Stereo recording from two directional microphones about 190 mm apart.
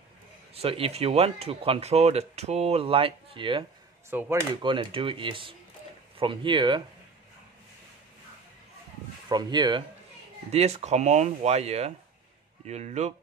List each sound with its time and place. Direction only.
0.6 s speech: 30° right (ahead or behind)
4.1 s speech: 10° right (ahead or behind)
4.6 s speech: 25° right (ahead or behind)
9.3 s speech: 20° right (ahead or behind)
10.5 s speech: 35° right (ahead or behind)